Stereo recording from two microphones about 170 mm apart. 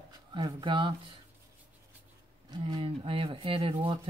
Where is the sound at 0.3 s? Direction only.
30° right (ahead or behind).